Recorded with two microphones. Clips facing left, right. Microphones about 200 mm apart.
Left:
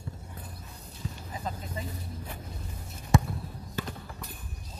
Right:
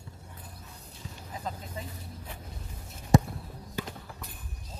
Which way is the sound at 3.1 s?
40° right (ahead or behind).